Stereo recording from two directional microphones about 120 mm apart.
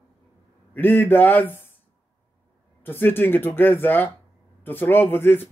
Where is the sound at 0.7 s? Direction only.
15° left (ahead or behind).